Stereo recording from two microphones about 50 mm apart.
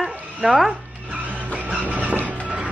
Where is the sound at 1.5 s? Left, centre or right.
Right.